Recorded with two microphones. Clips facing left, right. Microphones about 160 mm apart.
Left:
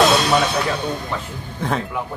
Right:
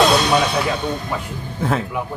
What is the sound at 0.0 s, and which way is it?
Music, centre (ahead or behind).